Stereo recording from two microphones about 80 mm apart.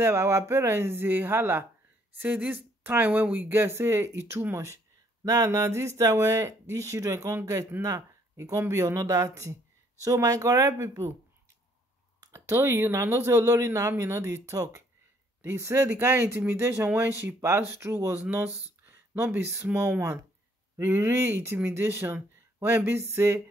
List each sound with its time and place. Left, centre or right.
0.0 s speech: right
7.7 s speech: right
12.4 s speech: right